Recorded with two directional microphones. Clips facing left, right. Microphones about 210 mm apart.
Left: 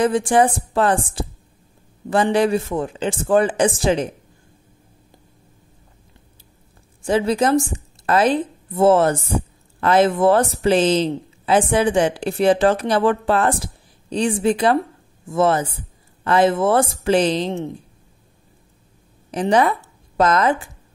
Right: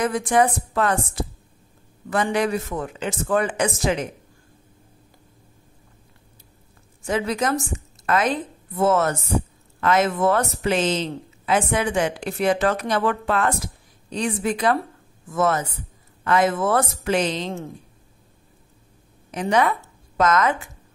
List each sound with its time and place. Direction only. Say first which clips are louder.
0.0 s speech: left 4 dB; 30° left (ahead or behind)
7.0 s a woman's voice: left 5 dB; 30° left (ahead or behind)
19.3 s speech: left 3 dB; 30° left (ahead or behind)